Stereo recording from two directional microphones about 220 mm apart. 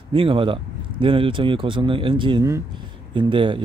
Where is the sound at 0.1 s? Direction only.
25° right (ahead or behind).